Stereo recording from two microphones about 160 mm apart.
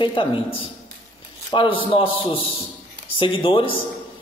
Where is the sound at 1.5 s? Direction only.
30° left (ahead or behind).